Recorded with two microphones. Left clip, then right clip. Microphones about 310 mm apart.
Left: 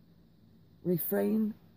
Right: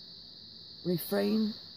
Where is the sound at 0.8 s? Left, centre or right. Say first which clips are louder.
Even; centre.